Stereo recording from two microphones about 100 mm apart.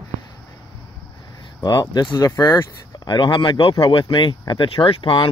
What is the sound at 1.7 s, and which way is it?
Speech, 40° left (ahead or behind).